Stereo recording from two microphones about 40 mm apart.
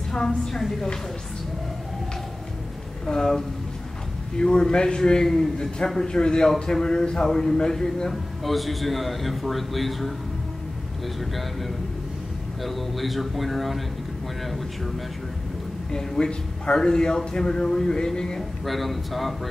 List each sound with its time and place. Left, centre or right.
0.5 s a man's voice: centre
3.1 s a man's voice: centre
8.1 s a man's voice: centre
11.1 s a man's voice: centre
15.9 s a man's voice: centre
18.7 s a man's voice: centre